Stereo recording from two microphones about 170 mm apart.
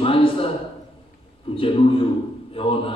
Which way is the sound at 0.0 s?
30° left (ahead or behind).